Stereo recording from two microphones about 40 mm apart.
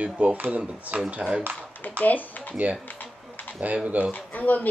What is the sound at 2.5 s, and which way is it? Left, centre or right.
Speech, right.